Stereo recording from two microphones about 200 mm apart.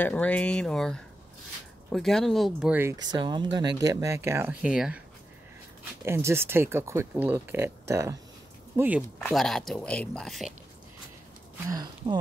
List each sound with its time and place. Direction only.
0.0 s speech: 5° left (ahead or behind)
6.0 s speech: 10° right (ahead or behind)
9.2 s speech: centre (ahead or behind)
11.7 s speech: 20° right (ahead or behind)